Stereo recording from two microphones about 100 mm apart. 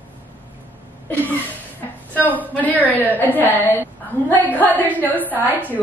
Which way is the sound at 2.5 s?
15° left (ahead or behind).